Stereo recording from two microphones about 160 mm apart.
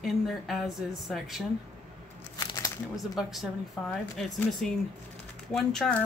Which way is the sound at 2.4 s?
20° left (ahead or behind).